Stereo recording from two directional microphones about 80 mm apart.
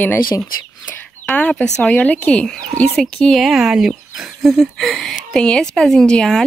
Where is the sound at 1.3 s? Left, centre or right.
Centre.